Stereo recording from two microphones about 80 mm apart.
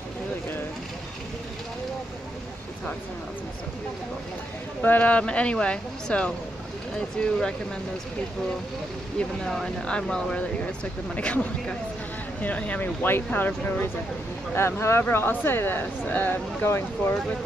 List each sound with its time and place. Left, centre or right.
4.8 s speech: centre
9.4 s speech: centre; by 13.8 s left
14.5 s speech: left